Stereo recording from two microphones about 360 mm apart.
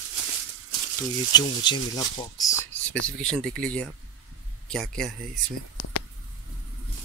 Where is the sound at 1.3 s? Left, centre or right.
Centre.